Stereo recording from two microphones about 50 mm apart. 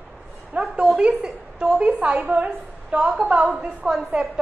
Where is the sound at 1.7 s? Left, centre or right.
Right.